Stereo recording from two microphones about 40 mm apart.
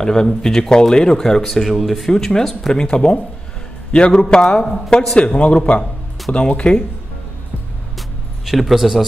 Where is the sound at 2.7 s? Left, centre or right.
Left.